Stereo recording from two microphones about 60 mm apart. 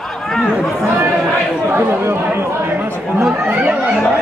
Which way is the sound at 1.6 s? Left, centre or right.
Right.